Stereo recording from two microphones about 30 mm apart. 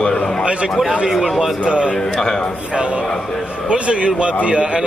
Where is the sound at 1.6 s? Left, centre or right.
Right.